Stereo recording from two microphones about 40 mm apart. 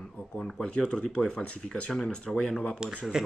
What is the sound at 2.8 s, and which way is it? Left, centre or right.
Speech, centre.